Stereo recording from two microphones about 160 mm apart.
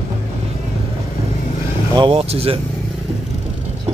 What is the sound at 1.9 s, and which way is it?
Speech, 35° right (ahead or behind).